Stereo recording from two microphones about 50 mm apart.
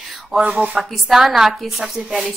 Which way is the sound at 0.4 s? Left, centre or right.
Right.